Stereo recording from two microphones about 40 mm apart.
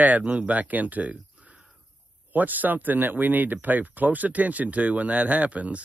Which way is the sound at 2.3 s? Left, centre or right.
Right.